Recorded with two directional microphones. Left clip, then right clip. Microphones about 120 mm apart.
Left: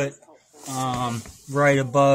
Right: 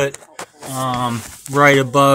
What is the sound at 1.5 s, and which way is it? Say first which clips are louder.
Speech: right 7 dB; 25° right (ahead or behind).